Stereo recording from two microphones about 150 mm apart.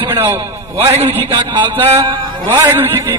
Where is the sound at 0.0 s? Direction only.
15° right (ahead or behind).